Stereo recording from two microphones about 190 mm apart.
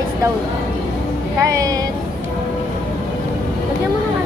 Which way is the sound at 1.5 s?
20° right (ahead or behind).